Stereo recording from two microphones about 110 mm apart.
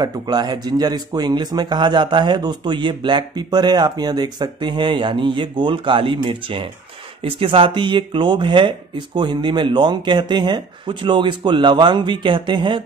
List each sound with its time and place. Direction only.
0.0 s speech: 40° right (ahead or behind)